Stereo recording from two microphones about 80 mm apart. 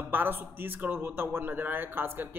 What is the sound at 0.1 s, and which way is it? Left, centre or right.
A man's voice, right.